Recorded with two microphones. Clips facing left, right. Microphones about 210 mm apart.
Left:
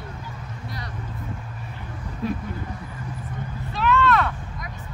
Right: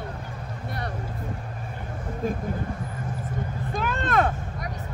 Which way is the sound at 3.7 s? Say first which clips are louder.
Left 4 dB; 50° right (ahead or behind).